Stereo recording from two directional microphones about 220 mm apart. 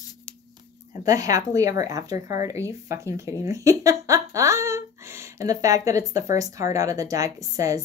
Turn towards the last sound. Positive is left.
turn(degrees=-15)  # may be behind; listen again after turning